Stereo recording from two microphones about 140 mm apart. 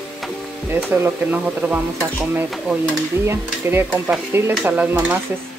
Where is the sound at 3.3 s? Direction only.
15° right (ahead or behind).